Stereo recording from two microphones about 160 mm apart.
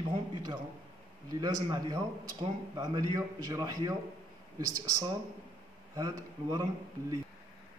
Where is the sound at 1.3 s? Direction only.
25° right (ahead or behind).